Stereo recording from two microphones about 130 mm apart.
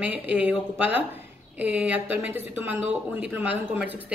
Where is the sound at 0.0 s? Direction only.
10° right (ahead or behind).